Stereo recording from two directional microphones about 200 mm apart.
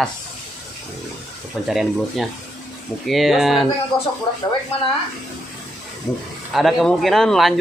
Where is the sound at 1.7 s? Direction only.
Centre (ahead or behind).